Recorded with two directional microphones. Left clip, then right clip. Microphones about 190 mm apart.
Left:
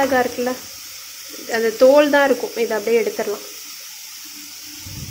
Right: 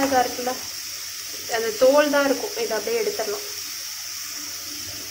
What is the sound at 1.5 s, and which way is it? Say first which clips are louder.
Speech: left 5 dB; 35° left (ahead or behind).